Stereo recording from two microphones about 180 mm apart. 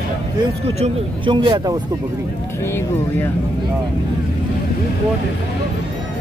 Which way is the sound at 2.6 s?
15° left (ahead or behind).